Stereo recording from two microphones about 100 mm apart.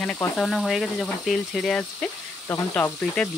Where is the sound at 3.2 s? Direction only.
5° left (ahead or behind).